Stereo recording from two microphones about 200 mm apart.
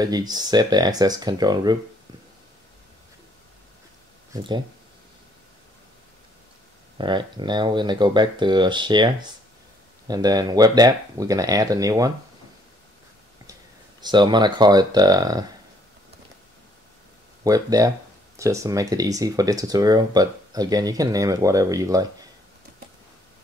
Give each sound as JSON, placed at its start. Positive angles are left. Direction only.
{"t": 0.0, "sound": "speech", "side_deg": -20}
{"t": 4.3, "sound": "speech", "side_deg": -25}
{"t": 7.0, "sound": "speech", "side_deg": -25}
{"t": 14.0, "sound": "speech", "side_deg": -20}
{"t": 17.4, "sound": "speech", "side_deg": -20}